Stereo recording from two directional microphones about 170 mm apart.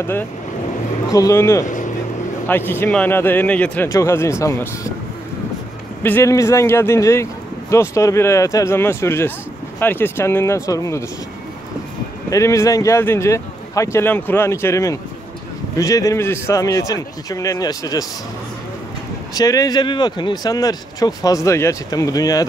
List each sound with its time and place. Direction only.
0.0 s speech: 15° left (ahead or behind)
6.0 s speech: 15° left (ahead or behind)
12.3 s speech: 20° left (ahead or behind)
19.3 s speech: 20° left (ahead or behind)